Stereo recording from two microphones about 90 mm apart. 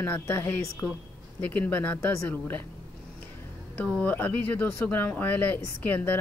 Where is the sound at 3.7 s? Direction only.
20° left (ahead or behind).